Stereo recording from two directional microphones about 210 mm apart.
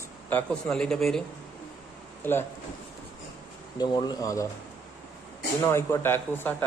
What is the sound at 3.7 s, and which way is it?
Speech, 20° left (ahead or behind).